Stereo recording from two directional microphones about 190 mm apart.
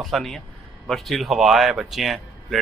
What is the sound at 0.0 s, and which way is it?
Speech, centre (ahead or behind).